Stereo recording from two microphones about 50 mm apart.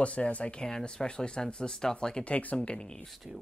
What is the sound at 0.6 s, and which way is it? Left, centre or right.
Speech, centre.